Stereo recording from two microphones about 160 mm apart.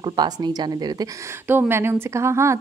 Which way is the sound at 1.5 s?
15° right (ahead or behind).